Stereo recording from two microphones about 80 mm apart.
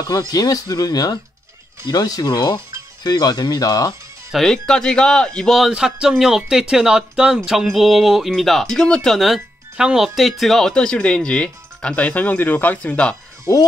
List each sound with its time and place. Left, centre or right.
0.3 s speech: left
4.3 s speech: centre
5.6 s speech: centre